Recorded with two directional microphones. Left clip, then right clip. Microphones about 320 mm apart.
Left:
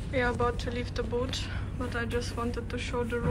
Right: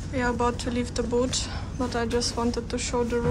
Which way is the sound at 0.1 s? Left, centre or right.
Centre.